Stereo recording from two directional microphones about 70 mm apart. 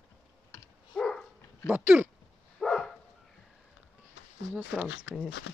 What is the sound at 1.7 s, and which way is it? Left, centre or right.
Speech, right.